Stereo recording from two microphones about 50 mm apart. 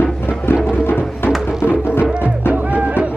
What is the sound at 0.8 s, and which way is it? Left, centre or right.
Music, left.